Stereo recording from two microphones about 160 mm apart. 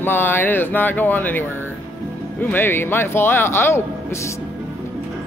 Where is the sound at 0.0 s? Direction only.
15° left (ahead or behind).